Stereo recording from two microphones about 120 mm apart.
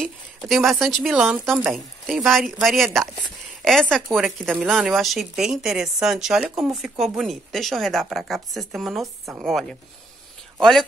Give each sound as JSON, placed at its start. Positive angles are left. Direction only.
{"t": 0.0, "sound": "speech", "side_deg": 0}